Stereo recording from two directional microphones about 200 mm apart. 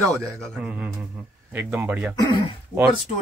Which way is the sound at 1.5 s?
10° right (ahead or behind).